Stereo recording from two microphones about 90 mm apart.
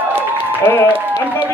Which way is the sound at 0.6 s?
25° left (ahead or behind).